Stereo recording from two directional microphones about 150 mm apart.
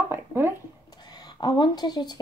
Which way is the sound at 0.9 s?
30° left (ahead or behind).